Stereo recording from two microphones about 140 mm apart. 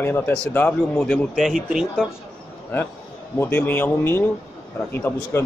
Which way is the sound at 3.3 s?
15° left (ahead or behind).